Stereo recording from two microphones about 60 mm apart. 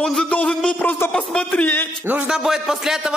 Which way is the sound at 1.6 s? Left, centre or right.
Left.